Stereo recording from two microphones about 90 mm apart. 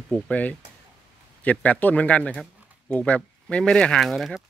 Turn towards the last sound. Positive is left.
turn(degrees=0)  # may be behind; listen again after turning